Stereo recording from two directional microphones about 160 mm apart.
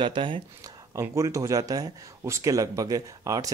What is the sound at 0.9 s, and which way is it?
Speech, 20° right (ahead or behind).